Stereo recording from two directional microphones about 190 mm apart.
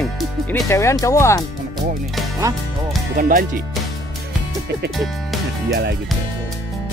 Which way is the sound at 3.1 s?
45° right (ahead or behind).